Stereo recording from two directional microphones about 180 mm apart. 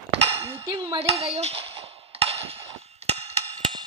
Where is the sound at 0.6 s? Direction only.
20° right (ahead or behind).